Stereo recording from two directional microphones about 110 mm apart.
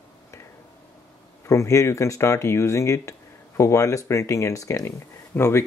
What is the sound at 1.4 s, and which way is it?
Speech, 30° left (ahead or behind).